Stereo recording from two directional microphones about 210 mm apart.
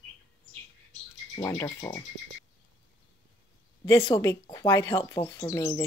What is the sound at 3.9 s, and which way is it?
A woman's voice, 20° left (ahead or behind).